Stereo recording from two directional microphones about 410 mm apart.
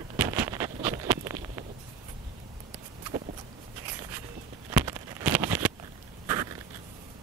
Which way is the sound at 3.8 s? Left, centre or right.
Centre.